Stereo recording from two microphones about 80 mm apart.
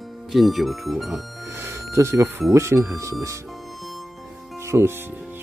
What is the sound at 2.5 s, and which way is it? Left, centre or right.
Speech, right.